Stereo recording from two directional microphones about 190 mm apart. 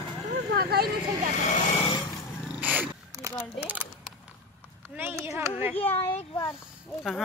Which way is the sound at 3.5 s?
10° right (ahead or behind).